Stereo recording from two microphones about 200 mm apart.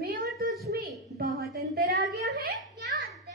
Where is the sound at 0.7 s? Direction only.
50° right (ahead or behind).